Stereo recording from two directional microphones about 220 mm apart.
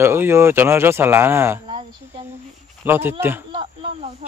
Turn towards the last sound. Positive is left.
turn(degrees=-25)  # may be behind; listen again after turning